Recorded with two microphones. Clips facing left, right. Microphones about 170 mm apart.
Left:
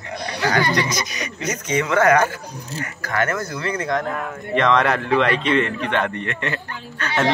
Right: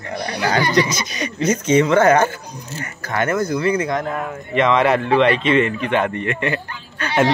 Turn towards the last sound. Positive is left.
turn(degrees=-10)  # may be behind; listen again after turning